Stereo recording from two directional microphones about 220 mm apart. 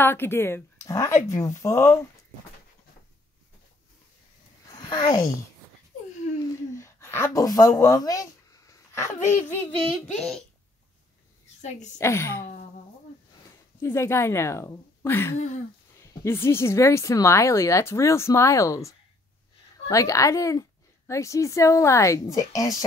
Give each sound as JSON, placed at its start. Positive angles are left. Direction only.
{"t": 0.0, "sound": "speech", "side_deg": 10}
{"t": 4.6, "sound": "speech", "side_deg": 20}
{"t": 6.5, "sound": "speech", "side_deg": 10}
{"t": 9.9, "sound": "a child's voice", "side_deg": 0}
{"t": 12.0, "sound": "speech", "side_deg": 10}
{"t": 13.7, "sound": "speech", "side_deg": 10}